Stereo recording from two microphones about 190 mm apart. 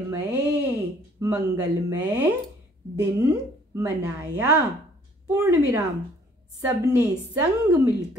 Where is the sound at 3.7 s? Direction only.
15° right (ahead or behind).